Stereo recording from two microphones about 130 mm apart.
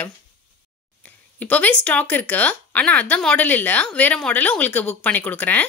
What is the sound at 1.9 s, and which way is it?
Speech, 10° left (ahead or behind).